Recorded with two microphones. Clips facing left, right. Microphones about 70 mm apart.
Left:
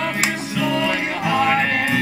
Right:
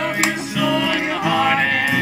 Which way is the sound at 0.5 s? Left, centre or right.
Left.